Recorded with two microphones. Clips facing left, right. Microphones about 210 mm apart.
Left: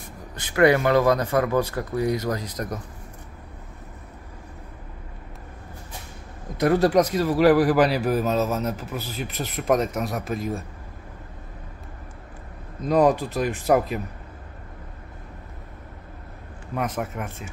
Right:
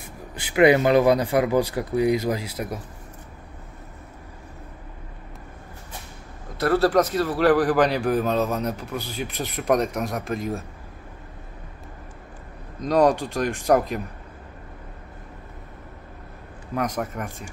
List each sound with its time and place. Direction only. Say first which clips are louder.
0.4 s speech: right 2 dB; 15° right (ahead or behind)
6.5 s a man's voice: left 1 dB; 15° left (ahead or behind)
12.8 s a man's voice: even; 5° left (ahead or behind)
16.7 s a man's voice: right 1 dB; 5° left (ahead or behind)